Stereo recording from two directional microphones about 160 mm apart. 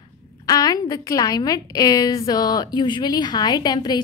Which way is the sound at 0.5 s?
25° left (ahead or behind).